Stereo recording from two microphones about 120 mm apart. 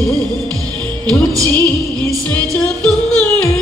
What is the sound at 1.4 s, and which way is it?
Music, 35° right (ahead or behind).